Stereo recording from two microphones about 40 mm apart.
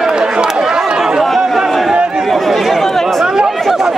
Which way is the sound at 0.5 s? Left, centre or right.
Centre.